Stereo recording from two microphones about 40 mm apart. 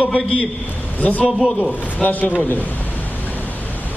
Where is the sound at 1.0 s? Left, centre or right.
Left.